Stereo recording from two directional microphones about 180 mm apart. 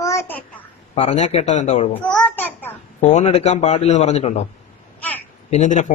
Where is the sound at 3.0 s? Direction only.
40° left (ahead or behind).